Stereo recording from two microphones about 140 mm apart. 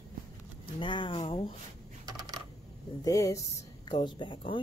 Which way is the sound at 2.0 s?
30° right (ahead or behind).